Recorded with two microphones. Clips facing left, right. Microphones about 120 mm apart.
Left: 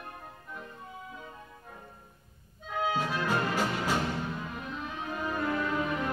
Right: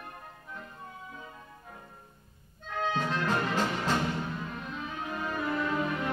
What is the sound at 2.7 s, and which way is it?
Brass instrument, 10° left (ahead or behind).